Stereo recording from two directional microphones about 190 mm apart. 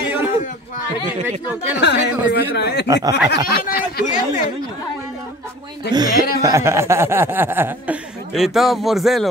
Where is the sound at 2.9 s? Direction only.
20° right (ahead or behind).